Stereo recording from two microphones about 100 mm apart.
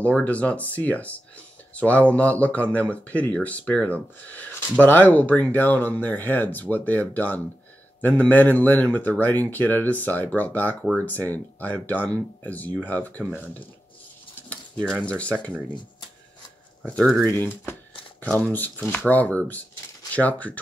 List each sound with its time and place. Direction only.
0.0 s speech: 15° left (ahead or behind)
17.2 s speech: 20° left (ahead or behind)